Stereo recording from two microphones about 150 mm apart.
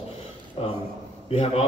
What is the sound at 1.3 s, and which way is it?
Speech, 40° left (ahead or behind).